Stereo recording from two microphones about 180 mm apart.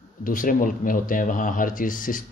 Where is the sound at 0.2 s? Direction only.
50° left (ahead or behind).